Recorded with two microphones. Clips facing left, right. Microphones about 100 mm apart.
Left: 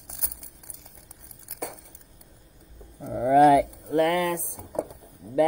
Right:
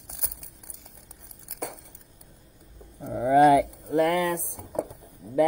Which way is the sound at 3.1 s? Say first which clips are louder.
Left 1 dB; 50° right (ahead or behind).